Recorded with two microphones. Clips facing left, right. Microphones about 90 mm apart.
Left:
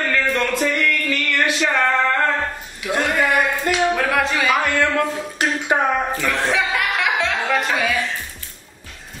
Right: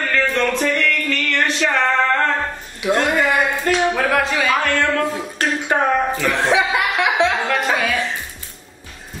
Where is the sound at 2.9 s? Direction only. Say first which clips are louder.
Right 4 dB; 20° right (ahead or behind).